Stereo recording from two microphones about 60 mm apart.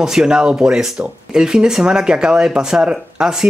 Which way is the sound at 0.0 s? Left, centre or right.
Centre.